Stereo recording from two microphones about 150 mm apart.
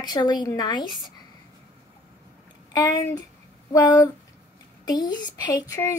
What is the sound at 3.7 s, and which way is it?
A woman's voice, 25° left (ahead or behind).